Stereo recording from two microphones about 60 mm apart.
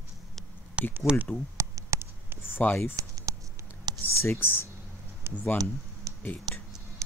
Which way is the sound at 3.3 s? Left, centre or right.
Right.